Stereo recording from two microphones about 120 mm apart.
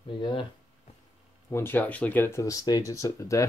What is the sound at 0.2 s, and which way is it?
Speech, 45° left (ahead or behind).